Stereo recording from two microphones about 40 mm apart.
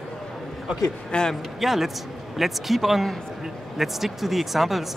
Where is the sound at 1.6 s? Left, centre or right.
Centre.